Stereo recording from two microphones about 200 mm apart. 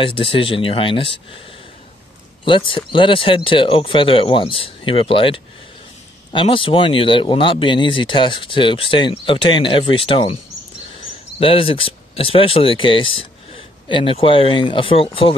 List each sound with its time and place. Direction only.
0.0 s speech: 25° left (ahead or behind)
2.4 s speech: 25° left (ahead or behind)
11.3 s speech: 25° left (ahead or behind)